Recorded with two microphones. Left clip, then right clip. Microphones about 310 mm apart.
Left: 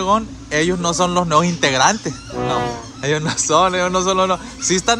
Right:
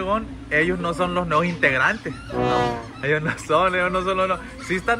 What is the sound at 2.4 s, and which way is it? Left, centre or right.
Speech, centre.